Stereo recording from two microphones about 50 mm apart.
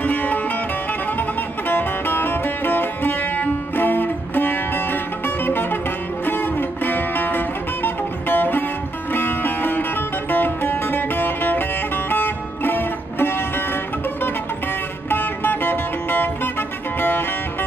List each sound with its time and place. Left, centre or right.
0.0 s music: left
1.7 s music: left
15.0 s music: left